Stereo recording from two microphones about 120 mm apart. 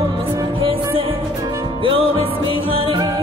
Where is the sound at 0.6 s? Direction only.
45° right (ahead or behind).